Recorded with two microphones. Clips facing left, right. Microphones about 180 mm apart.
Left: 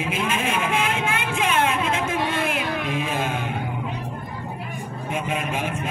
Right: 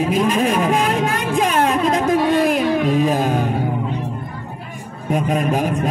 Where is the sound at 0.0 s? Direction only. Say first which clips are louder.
Right 8 dB; 40° right (ahead or behind).